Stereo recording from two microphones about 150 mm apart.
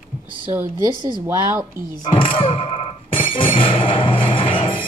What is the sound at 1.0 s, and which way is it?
Speech, 25° right (ahead or behind).